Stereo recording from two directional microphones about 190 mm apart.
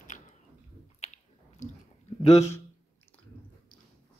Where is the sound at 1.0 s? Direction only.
40° left (ahead or behind).